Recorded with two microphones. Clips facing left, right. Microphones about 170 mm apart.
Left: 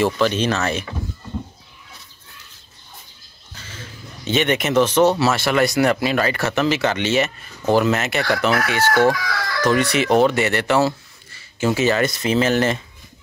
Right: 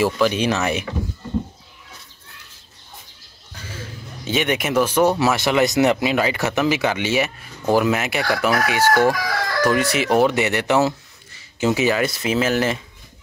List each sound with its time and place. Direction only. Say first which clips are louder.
0.0 s speech: even; 10° right (ahead or behind)
4.2 s speech: left 2 dB; 10° right (ahead or behind)
9.2 s speech: right 2 dB; 45° right (ahead or behind)
9.6 s speech: left 1 dB; 5° right (ahead or behind)